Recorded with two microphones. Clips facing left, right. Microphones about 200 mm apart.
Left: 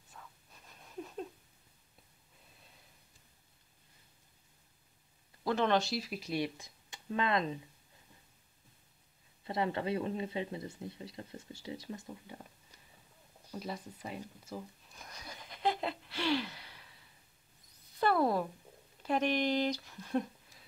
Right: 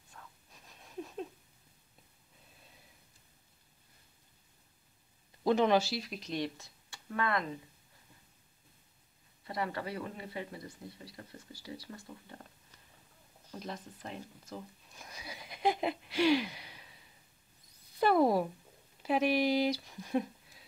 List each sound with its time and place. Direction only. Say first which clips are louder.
0.1 s a sound: even; centre (ahead or behind)
5.4 s speech: right 3 dB; 15° right (ahead or behind); by 7.5 s 20° left (ahead or behind)
9.5 s speech: left 4 dB; 25° left (ahead or behind)
13.5 s speech: left 1 dB; 5° left (ahead or behind)